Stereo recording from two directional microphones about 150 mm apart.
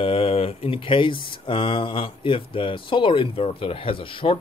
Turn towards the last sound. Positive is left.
turn(degrees=35)  # may be behind; listen again after turning